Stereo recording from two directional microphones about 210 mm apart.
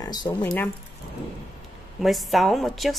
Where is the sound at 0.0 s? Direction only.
20° left (ahead or behind).